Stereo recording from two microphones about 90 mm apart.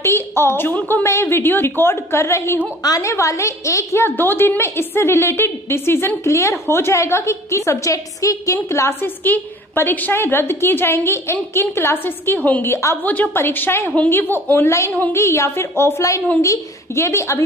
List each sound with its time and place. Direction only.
0.0 s a woman's voice: 25° left (ahead or behind)
9.2 s a woman's voice: 20° left (ahead or behind)
12.6 s a woman's voice: 30° left (ahead or behind)